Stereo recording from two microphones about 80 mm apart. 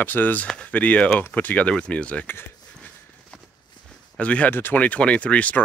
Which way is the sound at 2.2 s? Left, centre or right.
Left.